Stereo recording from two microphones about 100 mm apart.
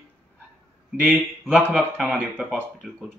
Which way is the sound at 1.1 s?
15° right (ahead or behind).